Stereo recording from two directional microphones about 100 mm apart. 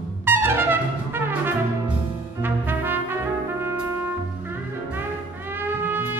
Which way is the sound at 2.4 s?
20° right (ahead or behind).